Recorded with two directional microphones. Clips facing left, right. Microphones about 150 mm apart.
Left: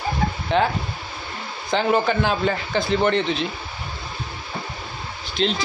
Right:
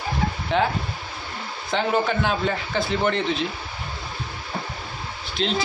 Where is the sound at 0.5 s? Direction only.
Centre (ahead or behind).